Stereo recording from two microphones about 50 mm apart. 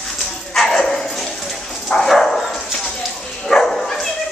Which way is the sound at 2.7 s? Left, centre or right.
Centre.